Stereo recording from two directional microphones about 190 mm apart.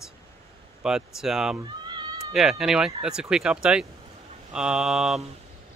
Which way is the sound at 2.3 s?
Centre (ahead or behind).